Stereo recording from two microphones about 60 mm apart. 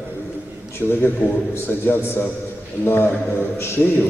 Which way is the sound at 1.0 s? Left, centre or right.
Left.